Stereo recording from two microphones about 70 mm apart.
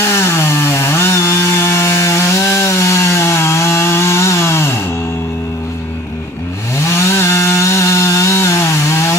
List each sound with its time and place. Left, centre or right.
0.0 s chainsaw: left
6.7 s chainsaw: left